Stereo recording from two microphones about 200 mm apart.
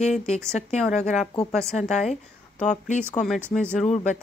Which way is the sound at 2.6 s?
35° left (ahead or behind).